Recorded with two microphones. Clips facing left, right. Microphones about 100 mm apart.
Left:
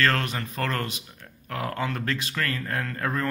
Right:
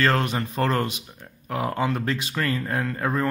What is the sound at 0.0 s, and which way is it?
Speech, 20° right (ahead or behind).